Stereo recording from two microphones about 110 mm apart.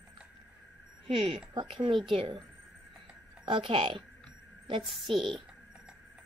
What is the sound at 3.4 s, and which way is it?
Speech, 50° right (ahead or behind).